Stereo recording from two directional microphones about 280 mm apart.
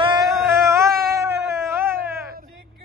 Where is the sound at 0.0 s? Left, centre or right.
Centre.